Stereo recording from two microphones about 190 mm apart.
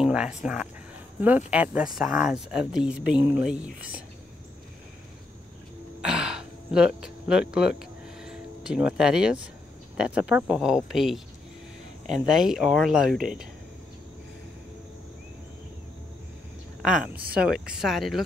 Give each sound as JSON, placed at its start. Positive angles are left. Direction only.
{"t": 0.0, "sound": "a woman's voice", "side_deg": -5}
{"t": 5.9, "sound": "a sound", "side_deg": -5}
{"t": 9.9, "sound": "speech", "side_deg": -5}
{"t": 16.8, "sound": "a woman's voice", "side_deg": -5}